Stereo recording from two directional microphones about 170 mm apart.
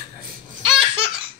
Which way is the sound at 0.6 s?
5° right (ahead or behind).